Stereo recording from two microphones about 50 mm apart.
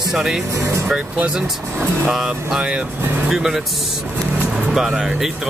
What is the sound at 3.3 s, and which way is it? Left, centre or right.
Speech, centre.